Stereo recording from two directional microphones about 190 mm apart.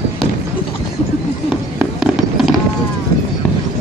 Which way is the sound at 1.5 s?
5° right (ahead or behind).